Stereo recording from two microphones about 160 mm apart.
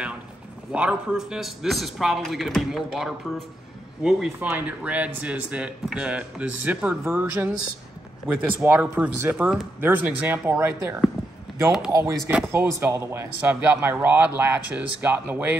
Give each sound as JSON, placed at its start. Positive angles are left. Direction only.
{"t": 0.7, "sound": "a man's voice", "side_deg": -5}
{"t": 8.5, "sound": "speech", "side_deg": -10}